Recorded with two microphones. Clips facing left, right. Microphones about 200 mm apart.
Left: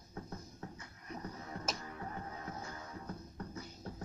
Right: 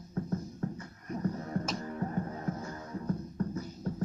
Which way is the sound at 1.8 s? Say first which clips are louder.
Right 10 dB; 45° right (ahead or behind).